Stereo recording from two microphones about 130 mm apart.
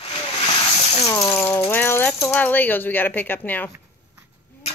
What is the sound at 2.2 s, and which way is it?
Speech, 15° left (ahead or behind).